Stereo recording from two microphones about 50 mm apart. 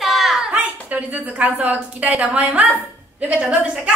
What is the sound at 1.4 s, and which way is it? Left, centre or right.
A woman's voice, right.